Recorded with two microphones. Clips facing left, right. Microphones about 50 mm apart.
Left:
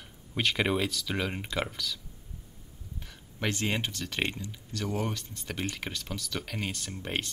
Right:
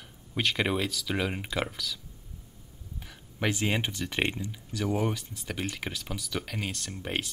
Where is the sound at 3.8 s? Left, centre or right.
Centre.